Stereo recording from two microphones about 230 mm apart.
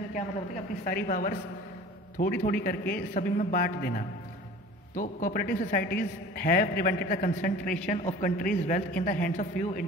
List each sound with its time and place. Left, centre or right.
0.8 s speech: left